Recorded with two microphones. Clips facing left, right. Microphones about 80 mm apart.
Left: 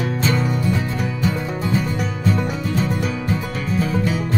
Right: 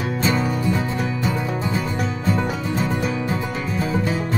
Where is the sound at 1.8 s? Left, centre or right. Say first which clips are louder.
Left 1 dB; right.